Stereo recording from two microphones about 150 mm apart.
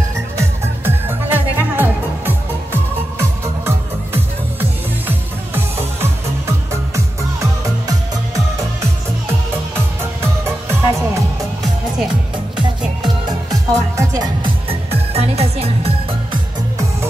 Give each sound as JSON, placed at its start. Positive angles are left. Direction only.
{"t": 0.4, "sound": "music", "side_deg": -15}
{"t": 10.4, "sound": "music", "side_deg": -15}
{"t": 13.5, "sound": "music", "side_deg": -25}
{"t": 14.7, "sound": "music", "side_deg": -40}